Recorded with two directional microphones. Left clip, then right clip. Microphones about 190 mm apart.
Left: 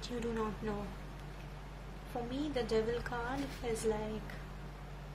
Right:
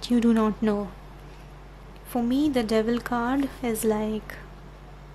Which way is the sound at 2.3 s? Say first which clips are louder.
Right 11 dB; 50° right (ahead or behind).